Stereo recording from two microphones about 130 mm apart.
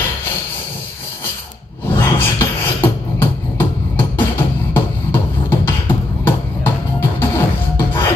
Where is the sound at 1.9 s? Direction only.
15° left (ahead or behind).